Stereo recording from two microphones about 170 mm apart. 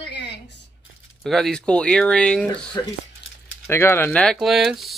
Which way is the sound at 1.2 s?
5° left (ahead or behind).